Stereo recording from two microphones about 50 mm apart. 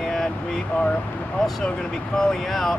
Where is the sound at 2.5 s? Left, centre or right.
Centre.